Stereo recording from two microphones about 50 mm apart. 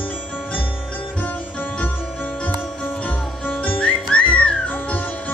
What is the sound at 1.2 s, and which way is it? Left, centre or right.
Music, left.